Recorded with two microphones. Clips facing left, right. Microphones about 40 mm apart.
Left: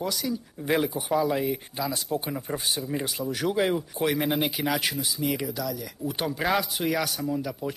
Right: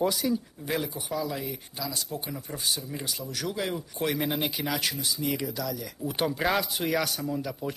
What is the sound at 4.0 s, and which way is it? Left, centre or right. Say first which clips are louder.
Speech: left 1 dB; centre.